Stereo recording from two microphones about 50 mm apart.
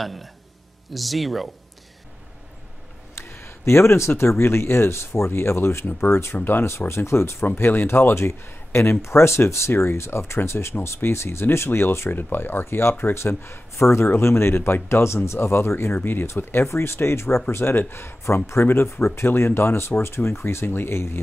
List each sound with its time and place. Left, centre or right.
0.0 s speech: centre
3.2 s a sound: left
4.1 s speech: left
6.3 s speech: left
6.9 s speech: left
7.5 s speech: left
8.5 s speech: left
9.0 s speech: left
12.1 s speech: left
16.6 s speech: left